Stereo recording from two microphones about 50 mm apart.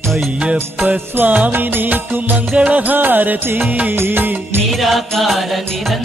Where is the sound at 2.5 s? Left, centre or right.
Right.